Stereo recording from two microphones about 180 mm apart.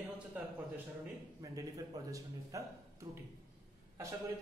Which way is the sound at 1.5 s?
20° right (ahead or behind).